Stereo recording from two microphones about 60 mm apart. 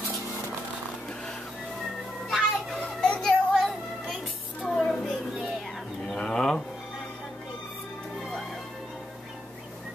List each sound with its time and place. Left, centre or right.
2.2 s children playing: centre
3.1 s music: centre
6.0 s pigeon: centre